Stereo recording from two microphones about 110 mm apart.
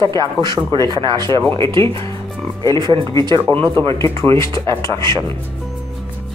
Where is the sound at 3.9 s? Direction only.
25° left (ahead or behind).